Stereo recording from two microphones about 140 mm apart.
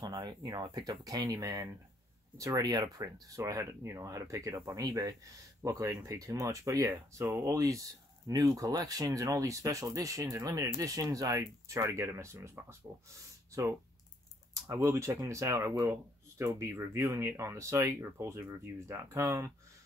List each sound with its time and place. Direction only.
0.0 s speech: 30° right (ahead or behind)
14.5 s speech: 20° right (ahead or behind)